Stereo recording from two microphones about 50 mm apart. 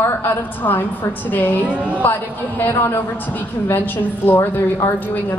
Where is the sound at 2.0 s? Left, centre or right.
Left.